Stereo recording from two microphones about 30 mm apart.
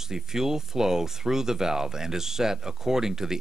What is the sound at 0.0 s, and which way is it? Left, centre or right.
Speech, centre.